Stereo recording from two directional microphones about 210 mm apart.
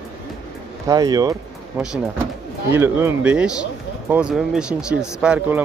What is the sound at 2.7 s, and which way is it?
Speech, 10° right (ahead or behind).